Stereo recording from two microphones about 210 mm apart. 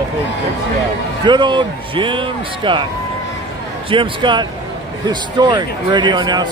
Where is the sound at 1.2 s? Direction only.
20° right (ahead or behind).